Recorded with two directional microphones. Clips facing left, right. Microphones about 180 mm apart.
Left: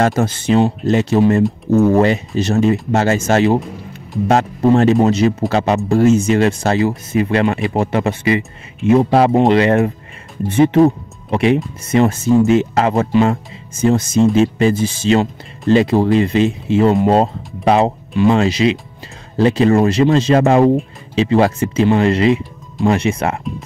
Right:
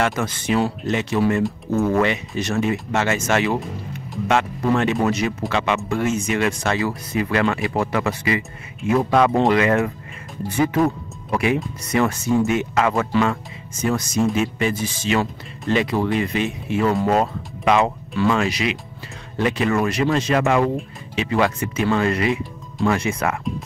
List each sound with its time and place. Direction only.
0.0 s speech: 35° left (ahead or behind)
5.5 s speech: 40° left (ahead or behind)